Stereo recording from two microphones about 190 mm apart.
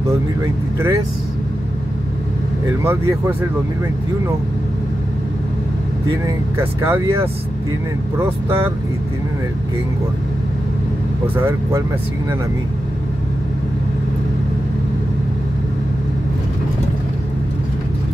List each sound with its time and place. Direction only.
0.4 s speech: 15° right (ahead or behind)
2.8 s speech: 10° right (ahead or behind)
6.2 s speech: 15° right (ahead or behind)
11.3 s speech: 10° right (ahead or behind)